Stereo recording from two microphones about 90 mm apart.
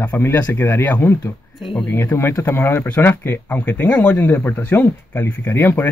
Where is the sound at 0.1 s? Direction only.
35° left (ahead or behind).